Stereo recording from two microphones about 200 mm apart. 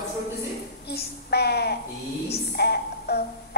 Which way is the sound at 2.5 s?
55° left (ahead or behind).